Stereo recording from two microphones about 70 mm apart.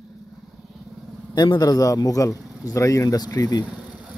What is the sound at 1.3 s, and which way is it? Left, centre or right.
A man's voice, left.